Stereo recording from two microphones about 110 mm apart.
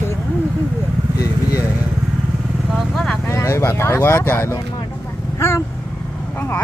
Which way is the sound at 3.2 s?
25° left (ahead or behind).